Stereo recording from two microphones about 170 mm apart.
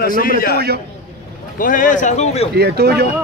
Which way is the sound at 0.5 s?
70° right (ahead or behind).